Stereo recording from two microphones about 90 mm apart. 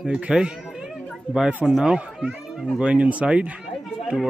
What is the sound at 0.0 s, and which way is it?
Speech, 10° right (ahead or behind).